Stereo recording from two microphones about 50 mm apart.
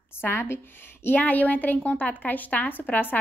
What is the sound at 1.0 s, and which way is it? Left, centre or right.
A woman's voice, left.